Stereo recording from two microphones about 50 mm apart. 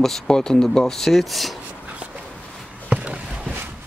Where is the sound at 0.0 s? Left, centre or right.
Centre.